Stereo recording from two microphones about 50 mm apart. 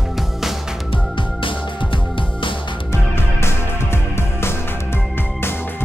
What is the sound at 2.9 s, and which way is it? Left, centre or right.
Music, left.